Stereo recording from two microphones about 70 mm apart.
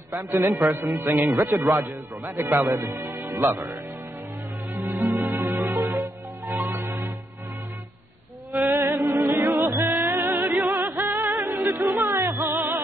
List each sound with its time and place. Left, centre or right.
0.4 s a man's voice: right
0.8 s speech: right
1.4 s a man's voice: right
2.2 s a man's voice: right
4.9 s music: right
5.3 s music: right
8.5 s music: right
11.2 s music: right